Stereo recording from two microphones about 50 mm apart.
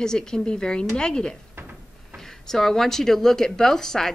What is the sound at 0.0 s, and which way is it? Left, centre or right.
Speech, centre.